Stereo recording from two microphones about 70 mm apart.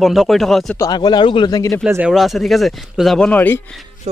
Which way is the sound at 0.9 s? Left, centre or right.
Left.